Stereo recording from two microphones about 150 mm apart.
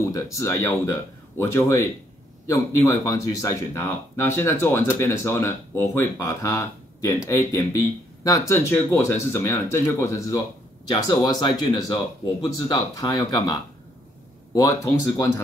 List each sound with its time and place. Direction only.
0.0 s speech: 20° left (ahead or behind)